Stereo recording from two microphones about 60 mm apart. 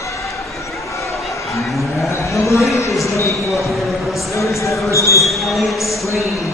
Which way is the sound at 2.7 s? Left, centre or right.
Left.